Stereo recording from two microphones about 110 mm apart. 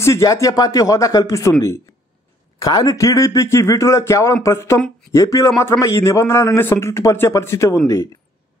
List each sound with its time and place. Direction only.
0.0 s speech: 30° left (ahead or behind)
2.6 s a man's voice: 35° left (ahead or behind)